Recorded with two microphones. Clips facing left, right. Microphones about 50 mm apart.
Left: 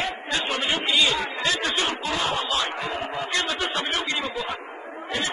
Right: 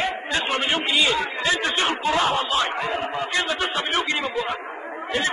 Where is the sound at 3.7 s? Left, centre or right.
Right.